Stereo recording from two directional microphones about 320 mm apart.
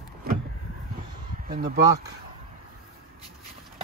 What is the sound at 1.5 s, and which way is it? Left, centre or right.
Speech, right.